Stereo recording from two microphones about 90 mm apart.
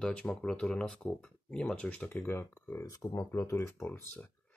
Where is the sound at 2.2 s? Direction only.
25° left (ahead or behind).